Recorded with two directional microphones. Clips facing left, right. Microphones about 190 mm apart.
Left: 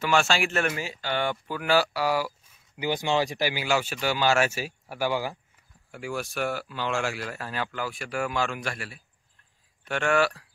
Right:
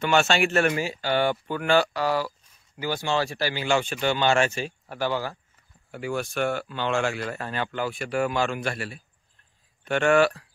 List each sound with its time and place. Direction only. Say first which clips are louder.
0.0 s speech: right 2 dB; centre (ahead or behind)
0.5 s speech: right 5 dB; 40° right (ahead or behind)
1.5 s speech: left 1 dB; 5° left (ahead or behind)
5.9 s speech: right 3 dB; centre (ahead or behind)
7.6 s speech: right 4 dB; 30° right (ahead or behind)